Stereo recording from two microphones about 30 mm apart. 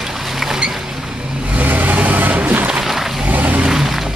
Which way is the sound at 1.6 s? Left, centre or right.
Right.